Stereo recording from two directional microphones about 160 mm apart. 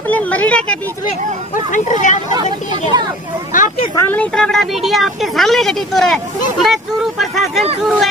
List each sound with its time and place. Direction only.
0.1 s speech: 10° left (ahead or behind)
1.5 s speech: 50° left (ahead or behind)
2.9 s speech: 25° right (ahead or behind)
3.5 s speech: 55° left (ahead or behind)
3.9 s a woman's voice: 15° left (ahead or behind)